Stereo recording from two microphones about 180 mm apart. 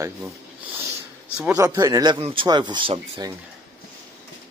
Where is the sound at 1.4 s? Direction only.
10° right (ahead or behind); by 3.3 s 30° right (ahead or behind).